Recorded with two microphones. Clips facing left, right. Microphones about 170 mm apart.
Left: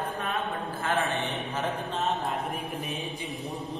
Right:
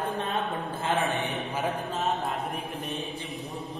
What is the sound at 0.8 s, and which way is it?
Mantra, 20° right (ahead or behind).